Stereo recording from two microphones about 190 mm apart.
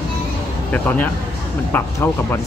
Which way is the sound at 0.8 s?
10° left (ahead or behind).